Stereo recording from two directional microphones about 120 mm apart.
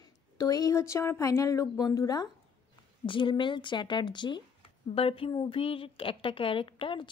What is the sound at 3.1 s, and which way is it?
Speech, 45° left (ahead or behind).